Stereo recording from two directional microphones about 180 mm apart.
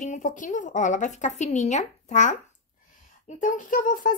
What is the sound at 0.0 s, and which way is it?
A woman's voice, 45° left (ahead or behind).